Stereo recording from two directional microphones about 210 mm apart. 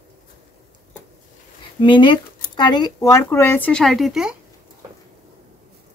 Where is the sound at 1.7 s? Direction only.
20° left (ahead or behind); by 4.4 s centre (ahead or behind).